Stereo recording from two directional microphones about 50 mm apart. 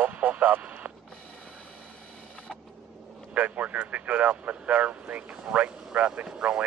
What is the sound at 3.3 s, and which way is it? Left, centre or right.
Speech, right.